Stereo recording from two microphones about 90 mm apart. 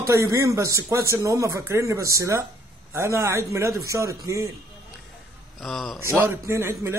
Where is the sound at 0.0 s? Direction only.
35° right (ahead or behind).